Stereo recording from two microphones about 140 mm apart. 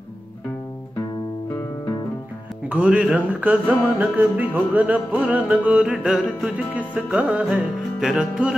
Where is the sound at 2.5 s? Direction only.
10° right (ahead or behind).